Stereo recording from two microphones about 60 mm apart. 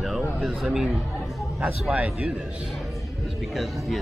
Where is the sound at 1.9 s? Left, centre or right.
Right.